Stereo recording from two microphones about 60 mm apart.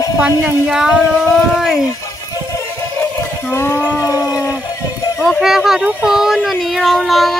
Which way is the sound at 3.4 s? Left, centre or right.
Left.